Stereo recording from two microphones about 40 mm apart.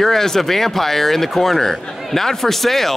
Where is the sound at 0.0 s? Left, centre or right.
Centre.